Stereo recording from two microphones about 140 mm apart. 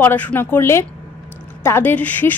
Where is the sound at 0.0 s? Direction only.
15° left (ahead or behind).